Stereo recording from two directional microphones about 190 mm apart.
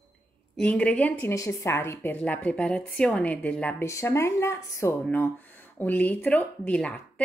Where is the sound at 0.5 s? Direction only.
5° left (ahead or behind).